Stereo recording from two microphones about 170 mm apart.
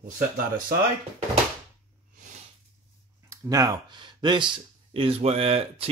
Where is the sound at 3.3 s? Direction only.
20° right (ahead or behind).